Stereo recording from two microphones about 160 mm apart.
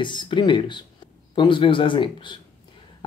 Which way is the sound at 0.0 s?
30° left (ahead or behind).